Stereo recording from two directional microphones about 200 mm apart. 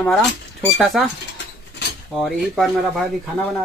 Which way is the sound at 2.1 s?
Centre (ahead or behind).